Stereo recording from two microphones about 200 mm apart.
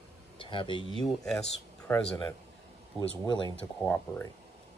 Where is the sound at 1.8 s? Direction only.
5° left (ahead or behind).